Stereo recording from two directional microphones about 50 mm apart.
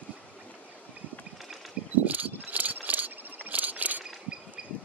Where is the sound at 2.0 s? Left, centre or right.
Right.